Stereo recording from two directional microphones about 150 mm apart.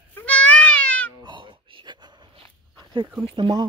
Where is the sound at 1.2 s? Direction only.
35° right (ahead or behind).